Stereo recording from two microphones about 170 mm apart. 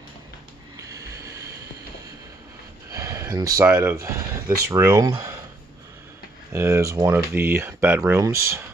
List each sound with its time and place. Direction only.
0.7 s a sound: 20° right (ahead or behind)
2.9 s speech: 20° right (ahead or behind)
6.5 s speech: 15° right (ahead or behind)